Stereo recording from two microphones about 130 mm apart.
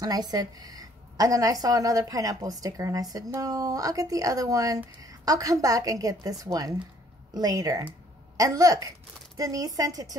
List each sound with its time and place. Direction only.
0.0 s a woman's voice: 30° right (ahead or behind)